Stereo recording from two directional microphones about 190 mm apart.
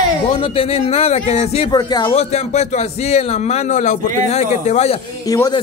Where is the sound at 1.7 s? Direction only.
20° left (ahead or behind).